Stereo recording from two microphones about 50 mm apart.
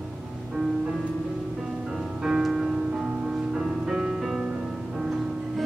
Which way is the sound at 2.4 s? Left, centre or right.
Centre.